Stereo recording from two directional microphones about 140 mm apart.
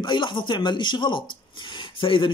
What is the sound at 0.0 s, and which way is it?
Speech, 35° left (ahead or behind).